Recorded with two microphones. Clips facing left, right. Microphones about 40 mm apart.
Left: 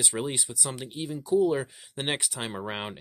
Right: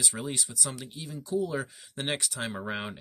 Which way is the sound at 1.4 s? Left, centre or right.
Centre.